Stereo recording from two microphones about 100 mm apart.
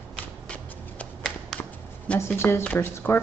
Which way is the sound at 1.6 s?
15° left (ahead or behind).